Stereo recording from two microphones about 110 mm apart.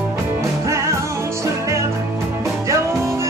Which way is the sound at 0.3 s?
30° right (ahead or behind).